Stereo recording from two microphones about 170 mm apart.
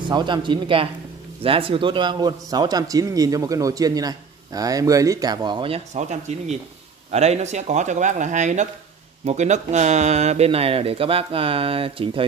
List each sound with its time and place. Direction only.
0.1 s a man's voice: 25° right (ahead or behind)
5.9 s speech: 45° right (ahead or behind)